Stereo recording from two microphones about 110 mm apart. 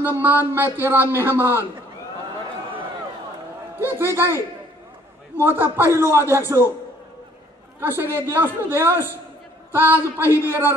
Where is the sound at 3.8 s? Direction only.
20° right (ahead or behind).